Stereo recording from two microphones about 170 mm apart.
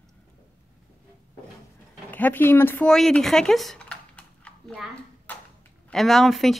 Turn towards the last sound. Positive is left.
turn(degrees=0)  # may be behind; listen again after turning